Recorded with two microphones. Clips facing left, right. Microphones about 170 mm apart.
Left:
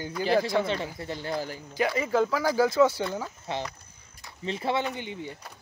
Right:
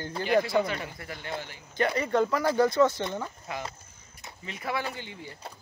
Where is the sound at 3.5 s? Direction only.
30° left (ahead or behind).